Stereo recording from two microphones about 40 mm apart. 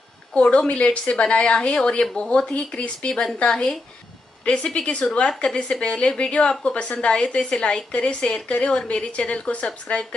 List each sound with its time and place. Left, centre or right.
0.3 s a woman's voice: left